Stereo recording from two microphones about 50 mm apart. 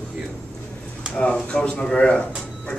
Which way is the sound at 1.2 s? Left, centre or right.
Left.